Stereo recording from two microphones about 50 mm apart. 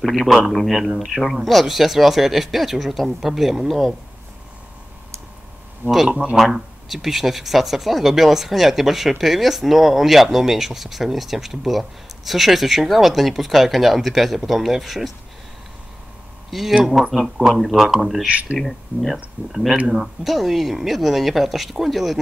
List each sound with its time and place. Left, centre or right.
0.5 s speech: centre
5.8 s speech: right
6.3 s speech: centre
16.4 s speech: centre
18.3 s speech: right
18.6 s speech: centre
19.5 s speech: centre